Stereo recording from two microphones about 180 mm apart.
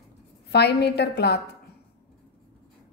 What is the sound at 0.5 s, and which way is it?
Speech, 65° left (ahead or behind).